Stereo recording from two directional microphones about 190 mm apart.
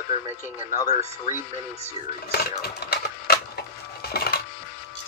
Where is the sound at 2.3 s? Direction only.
55° left (ahead or behind).